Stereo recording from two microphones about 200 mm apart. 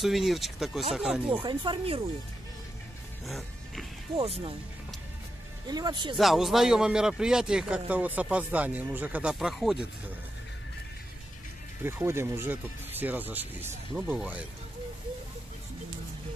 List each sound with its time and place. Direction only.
0.0 s speech: centre (ahead or behind)
1.3 s speech: 25° right (ahead or behind)
3.3 s music: centre (ahead or behind)
4.2 s speech: 30° right (ahead or behind)
5.7 s speech: 20° right (ahead or behind)
6.1 s speech: centre (ahead or behind)
11.8 s speech: 10° right (ahead or behind)